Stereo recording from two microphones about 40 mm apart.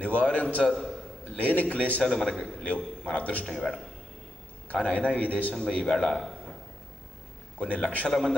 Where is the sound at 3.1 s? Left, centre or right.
Left.